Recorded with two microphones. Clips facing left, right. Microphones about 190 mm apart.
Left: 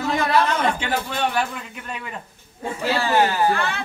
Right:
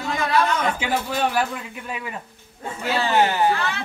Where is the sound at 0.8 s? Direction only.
5° right (ahead or behind).